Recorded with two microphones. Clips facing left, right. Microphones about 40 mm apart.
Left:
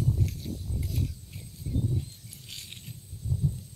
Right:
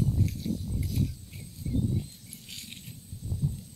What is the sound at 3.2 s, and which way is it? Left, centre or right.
Heart sounds, right.